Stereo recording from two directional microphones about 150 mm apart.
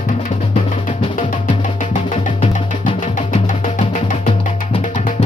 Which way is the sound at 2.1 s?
40° left (ahead or behind).